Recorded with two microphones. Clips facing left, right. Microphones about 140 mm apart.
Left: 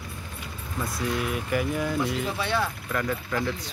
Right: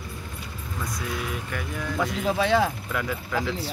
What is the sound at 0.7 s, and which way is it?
Speech, 5° left (ahead or behind).